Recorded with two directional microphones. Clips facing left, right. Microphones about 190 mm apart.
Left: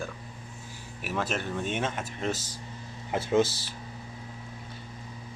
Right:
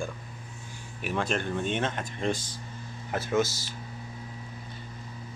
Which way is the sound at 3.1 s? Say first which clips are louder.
Left 2 dB; 25° left (ahead or behind).